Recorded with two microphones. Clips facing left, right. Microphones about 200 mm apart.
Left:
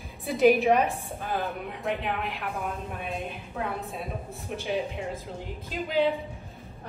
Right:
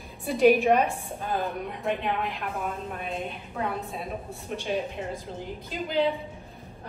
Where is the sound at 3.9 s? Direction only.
Centre (ahead or behind).